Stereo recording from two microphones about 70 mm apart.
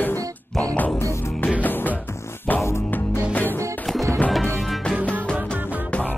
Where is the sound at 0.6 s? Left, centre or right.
Centre.